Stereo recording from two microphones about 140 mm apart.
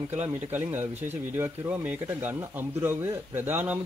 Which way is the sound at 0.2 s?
15° right (ahead or behind).